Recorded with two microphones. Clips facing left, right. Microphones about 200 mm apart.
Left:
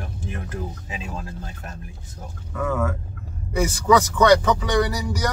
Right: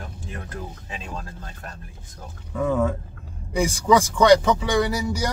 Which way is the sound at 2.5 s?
15° right (ahead or behind).